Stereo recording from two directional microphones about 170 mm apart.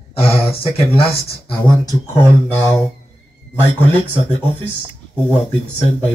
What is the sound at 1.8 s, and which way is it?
Speech, 15° left (ahead or behind).